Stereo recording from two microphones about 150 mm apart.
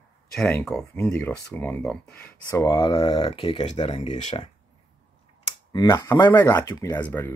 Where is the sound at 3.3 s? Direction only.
35° left (ahead or behind).